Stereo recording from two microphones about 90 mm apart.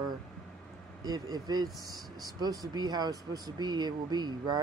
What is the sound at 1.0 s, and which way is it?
Speech, 45° right (ahead or behind).